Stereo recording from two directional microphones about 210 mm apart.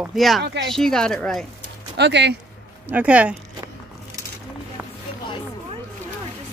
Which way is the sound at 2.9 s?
5° right (ahead or behind).